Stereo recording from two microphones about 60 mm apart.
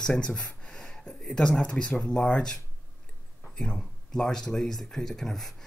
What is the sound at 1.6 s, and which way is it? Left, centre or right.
Speech, centre.